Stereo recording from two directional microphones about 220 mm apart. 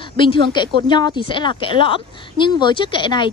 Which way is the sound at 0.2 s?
20° left (ahead or behind).